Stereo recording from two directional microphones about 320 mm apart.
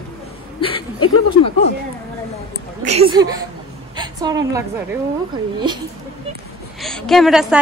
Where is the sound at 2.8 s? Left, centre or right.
Centre.